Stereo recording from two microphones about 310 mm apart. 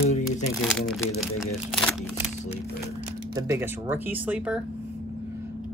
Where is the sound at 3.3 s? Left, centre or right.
Centre.